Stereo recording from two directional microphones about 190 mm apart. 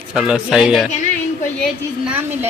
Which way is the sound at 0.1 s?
5° right (ahead or behind).